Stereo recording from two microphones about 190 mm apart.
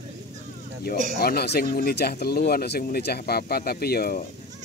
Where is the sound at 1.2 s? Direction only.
55° left (ahead or behind).